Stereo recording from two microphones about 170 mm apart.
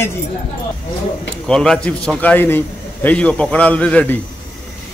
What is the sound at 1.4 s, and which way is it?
A man's voice, 5° left (ahead or behind).